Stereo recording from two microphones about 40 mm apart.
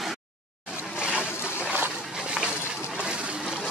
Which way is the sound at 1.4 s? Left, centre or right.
Left.